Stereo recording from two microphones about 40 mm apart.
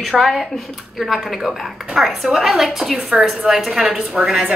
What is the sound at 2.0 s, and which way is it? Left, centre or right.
A woman's voice, centre.